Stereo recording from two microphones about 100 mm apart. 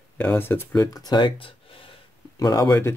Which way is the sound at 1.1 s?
50° left (ahead or behind).